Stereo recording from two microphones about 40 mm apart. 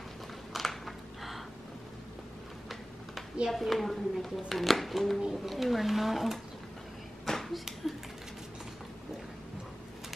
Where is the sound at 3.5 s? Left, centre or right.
Centre.